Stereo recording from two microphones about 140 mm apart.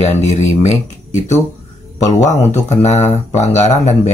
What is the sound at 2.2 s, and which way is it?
Speech, 55° left (ahead or behind).